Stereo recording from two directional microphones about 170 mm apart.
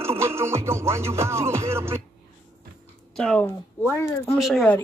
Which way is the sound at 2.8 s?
5° left (ahead or behind).